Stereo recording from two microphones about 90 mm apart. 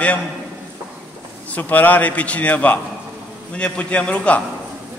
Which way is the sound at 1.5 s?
20° left (ahead or behind).